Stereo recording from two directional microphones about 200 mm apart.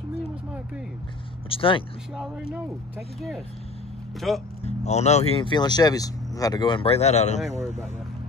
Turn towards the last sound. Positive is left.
turn(degrees=35)  # may be behind; listen again after turning